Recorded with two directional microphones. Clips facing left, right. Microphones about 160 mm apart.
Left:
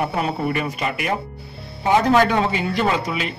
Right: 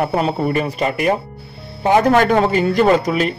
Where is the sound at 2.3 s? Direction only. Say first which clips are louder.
Right 6 dB; 45° right (ahead or behind).